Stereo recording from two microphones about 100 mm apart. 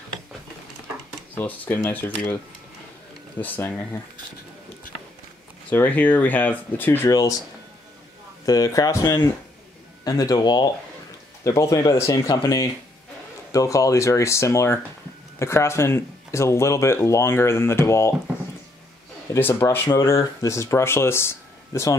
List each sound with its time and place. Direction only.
1.3 s speech: 15° left (ahead or behind)
3.3 s speech: 20° left (ahead or behind)
5.7 s speech: 15° left (ahead or behind)
7.1 s speech: 35° left (ahead or behind)
8.5 s speech: 35° left (ahead or behind)
10.0 s speech: 40° left (ahead or behind)
11.4 s speech: 30° left (ahead or behind)
19.3 s speech: 25° left (ahead or behind)